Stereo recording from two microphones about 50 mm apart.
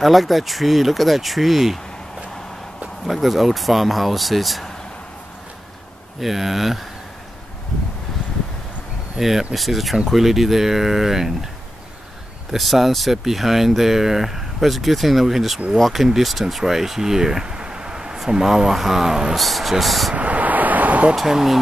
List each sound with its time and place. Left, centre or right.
0.0 s speech: centre
3.1 s speech: centre
6.2 s speech: centre
9.2 s speech: centre
12.5 s speech: centre
20.2 s vehicle: right
21.1 s speech: centre